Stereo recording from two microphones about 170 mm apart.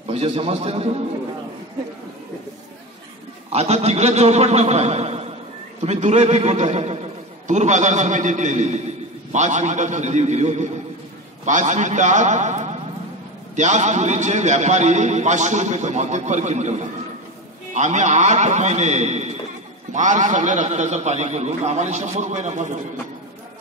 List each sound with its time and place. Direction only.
0.1 s a man's voice: 35° right (ahead or behind)
3.4 s a man's voice: 40° right (ahead or behind)